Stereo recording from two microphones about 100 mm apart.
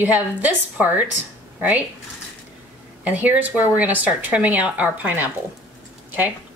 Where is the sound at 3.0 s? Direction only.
15° right (ahead or behind).